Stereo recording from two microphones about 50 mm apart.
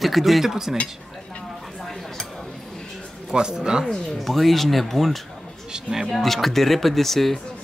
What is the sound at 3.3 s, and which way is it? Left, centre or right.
Speech, centre.